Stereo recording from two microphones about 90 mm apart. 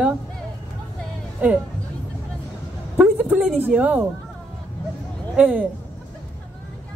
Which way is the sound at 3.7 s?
15° right (ahead or behind).